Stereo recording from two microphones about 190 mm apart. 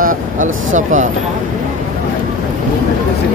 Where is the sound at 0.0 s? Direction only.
45° right (ahead or behind).